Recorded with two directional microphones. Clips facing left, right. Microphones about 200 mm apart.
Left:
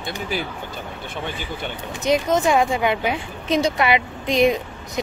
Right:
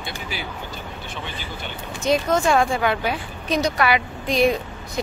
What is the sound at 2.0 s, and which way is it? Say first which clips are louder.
A woman's voice: left 1 dB; 20° left (ahead or behind).